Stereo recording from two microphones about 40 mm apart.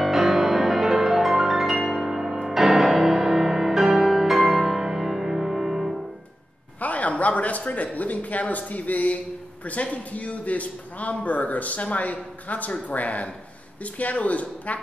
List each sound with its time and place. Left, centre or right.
0.0 s music: centre
6.8 s a man's voice: left